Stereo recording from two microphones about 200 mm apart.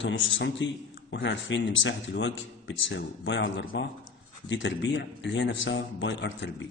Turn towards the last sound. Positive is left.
turn(degrees=65)  # may be behind; listen again after turning